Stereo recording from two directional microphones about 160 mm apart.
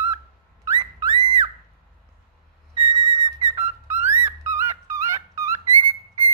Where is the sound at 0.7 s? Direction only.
25° right (ahead or behind).